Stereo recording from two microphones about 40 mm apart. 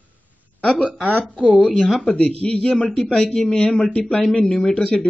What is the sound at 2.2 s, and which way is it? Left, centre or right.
Speech, left.